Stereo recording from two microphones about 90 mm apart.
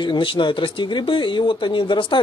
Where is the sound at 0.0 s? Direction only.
65° left (ahead or behind).